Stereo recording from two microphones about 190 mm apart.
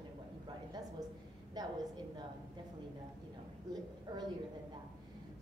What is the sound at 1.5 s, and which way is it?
Speech, 20° right (ahead or behind).